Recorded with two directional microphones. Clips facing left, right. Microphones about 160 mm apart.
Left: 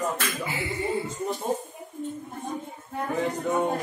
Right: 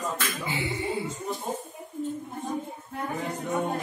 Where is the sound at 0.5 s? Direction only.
20° right (ahead or behind).